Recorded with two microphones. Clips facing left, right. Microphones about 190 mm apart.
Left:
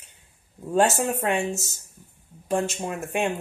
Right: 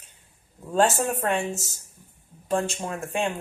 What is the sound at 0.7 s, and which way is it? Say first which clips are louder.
Speech: left 1 dB; 15° left (ahead or behind).